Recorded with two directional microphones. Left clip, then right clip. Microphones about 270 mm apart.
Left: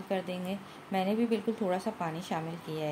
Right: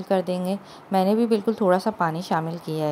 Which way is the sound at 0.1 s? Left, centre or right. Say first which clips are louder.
Right 11 dB; right.